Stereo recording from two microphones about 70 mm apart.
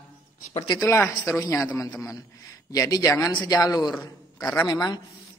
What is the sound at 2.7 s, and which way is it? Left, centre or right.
Speech, left.